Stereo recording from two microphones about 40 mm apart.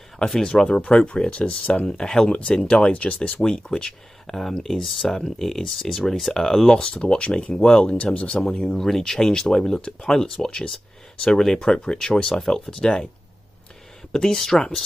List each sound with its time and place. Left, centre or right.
0.3 s speech: centre
1.9 s speech: centre
2.2 s speech: left
4.3 s speech: centre
7.0 s speech: left
8.4 s speech: centre
14.1 s speech: centre